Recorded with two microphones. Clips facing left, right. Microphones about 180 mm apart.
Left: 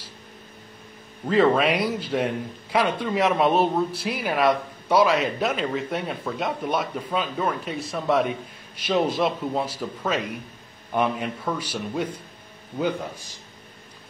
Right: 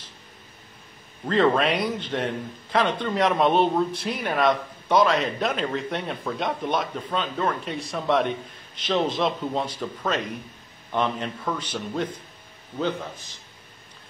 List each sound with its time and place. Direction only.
1.2 s a man's voice: 5° left (ahead or behind)